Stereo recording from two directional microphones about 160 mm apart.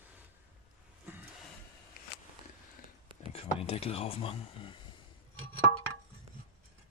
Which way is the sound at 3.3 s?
35° left (ahead or behind).